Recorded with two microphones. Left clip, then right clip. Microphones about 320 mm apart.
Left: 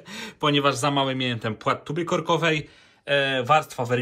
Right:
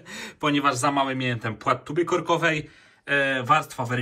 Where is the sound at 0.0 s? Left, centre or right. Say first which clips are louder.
Left 2 dB; centre.